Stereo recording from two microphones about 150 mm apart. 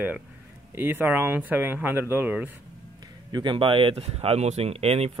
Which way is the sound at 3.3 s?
30° right (ahead or behind).